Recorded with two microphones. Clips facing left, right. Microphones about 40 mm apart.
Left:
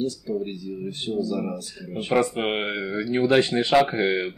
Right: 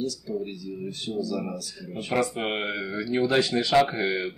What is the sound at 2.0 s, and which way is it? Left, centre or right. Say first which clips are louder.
Speech: left 4 dB; left.